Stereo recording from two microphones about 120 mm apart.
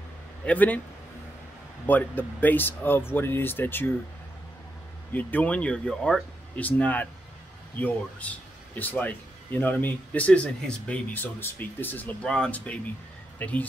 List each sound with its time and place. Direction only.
0.5 s speech: 15° left (ahead or behind)
1.9 s speech: 15° left (ahead or behind)
5.1 s speech: 15° left (ahead or behind)